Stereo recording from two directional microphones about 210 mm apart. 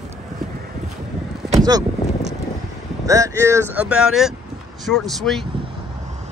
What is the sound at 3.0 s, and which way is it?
Speech, 15° right (ahead or behind).